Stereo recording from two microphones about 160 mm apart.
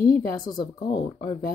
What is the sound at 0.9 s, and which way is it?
Speech, 50° left (ahead or behind).